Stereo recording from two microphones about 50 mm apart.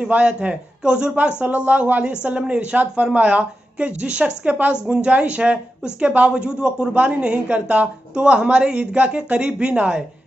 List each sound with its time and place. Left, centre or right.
0.0 s speech: right
1.4 s speech: right